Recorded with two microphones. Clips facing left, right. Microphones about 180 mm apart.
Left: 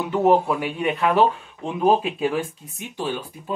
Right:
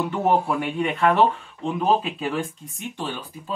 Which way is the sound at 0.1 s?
5° left (ahead or behind).